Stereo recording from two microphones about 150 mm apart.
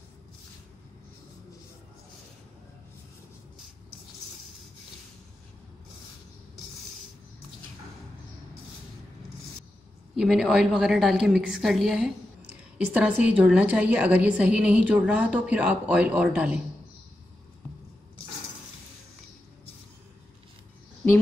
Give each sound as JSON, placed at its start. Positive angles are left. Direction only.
{"t": 10.1, "sound": "a woman's voice", "side_deg": 0}